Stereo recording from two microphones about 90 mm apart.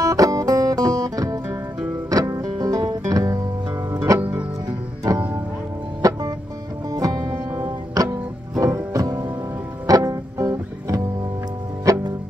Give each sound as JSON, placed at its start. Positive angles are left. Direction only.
{"t": 0.0, "sound": "music", "side_deg": -40}
{"t": 6.9, "sound": "music", "side_deg": -40}